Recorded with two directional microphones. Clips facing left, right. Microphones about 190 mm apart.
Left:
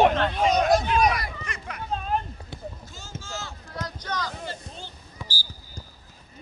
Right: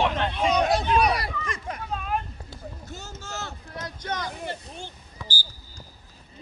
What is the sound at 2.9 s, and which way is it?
Run, 65° right (ahead or behind).